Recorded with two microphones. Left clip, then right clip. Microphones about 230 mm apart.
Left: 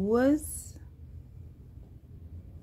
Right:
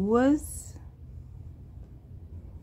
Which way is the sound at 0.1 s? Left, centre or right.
Centre.